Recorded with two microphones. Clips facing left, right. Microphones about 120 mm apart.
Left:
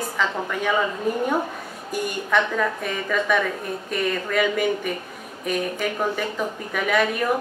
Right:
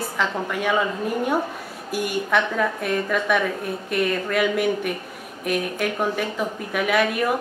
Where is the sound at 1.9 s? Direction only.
5° right (ahead or behind).